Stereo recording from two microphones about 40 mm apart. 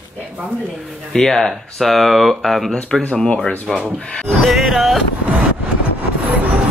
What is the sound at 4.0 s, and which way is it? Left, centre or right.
Speech, left.